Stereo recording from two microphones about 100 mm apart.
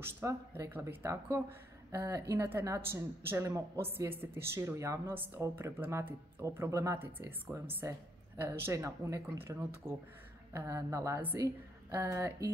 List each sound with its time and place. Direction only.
0.2 s a woman's voice: 30° right (ahead or behind)